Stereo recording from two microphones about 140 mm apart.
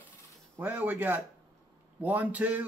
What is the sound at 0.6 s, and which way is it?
Speech, 10° right (ahead or behind).